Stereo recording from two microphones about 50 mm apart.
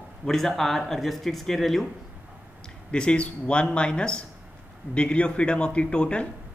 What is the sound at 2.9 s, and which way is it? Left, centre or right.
A man's voice, left.